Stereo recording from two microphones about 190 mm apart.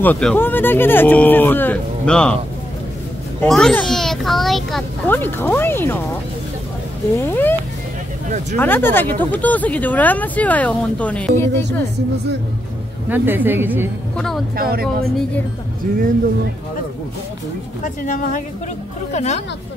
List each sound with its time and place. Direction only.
0.0 s speech: 5° left (ahead or behind)
3.4 s a child's voice: centre (ahead or behind)
7.2 s speech: 10° left (ahead or behind)
8.5 s speech: 10° left (ahead or behind)
13.1 s a woman's voice: 10° right (ahead or behind)
14.1 s a child's voice: 5° left (ahead or behind)
14.6 s speech: 55° right (ahead or behind)
17.8 s speech: 45° left (ahead or behind)